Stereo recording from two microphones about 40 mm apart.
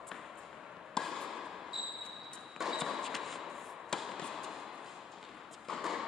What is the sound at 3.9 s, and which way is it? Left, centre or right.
Basketball bounce, centre.